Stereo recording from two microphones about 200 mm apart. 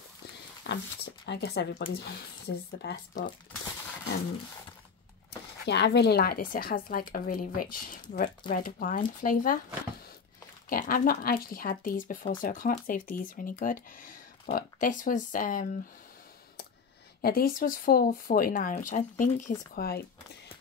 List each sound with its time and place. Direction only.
0.7 s speech: 55° left (ahead or behind)
5.7 s speech: 55° left (ahead or behind); by 9.6 s 40° left (ahead or behind)
10.7 s speech: 45° left (ahead or behind)
17.2 s speech: 50° left (ahead or behind)